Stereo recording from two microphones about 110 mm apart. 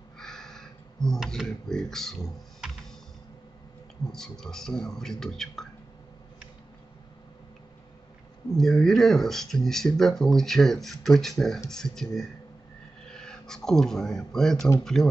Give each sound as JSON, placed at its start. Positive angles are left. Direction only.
{"t": 0.2, "sound": "speech", "side_deg": 5}
{"t": 4.1, "sound": "speech", "side_deg": 5}
{"t": 8.5, "sound": "speech", "side_deg": 5}